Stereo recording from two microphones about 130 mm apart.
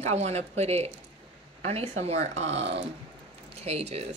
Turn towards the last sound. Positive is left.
turn(degrees=-50)  # may be behind; listen again after turning